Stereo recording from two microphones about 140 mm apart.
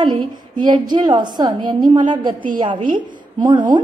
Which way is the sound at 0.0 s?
30° right (ahead or behind).